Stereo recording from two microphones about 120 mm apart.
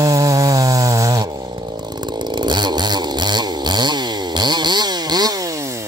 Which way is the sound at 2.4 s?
40° right (ahead or behind).